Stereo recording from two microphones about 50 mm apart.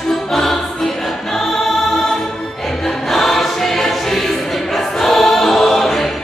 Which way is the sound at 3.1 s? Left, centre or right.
Centre.